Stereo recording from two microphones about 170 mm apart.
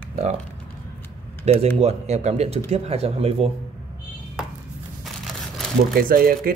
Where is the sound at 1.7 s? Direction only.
40° right (ahead or behind).